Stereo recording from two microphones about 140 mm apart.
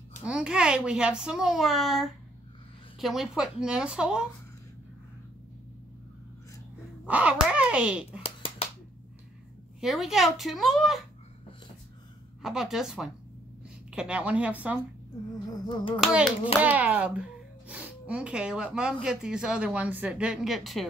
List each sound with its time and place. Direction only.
0.2 s a child's voice: 5° right (ahead or behind)
7.1 s speech: 10° right (ahead or behind)
8.2 s a sound: 45° left (ahead or behind)
9.8 s a child's voice: centre (ahead or behind)
12.4 s a child's voice: 5° right (ahead or behind)
15.6 s speech: 35° left (ahead or behind)
16.0 s speech: 10° right (ahead or behind)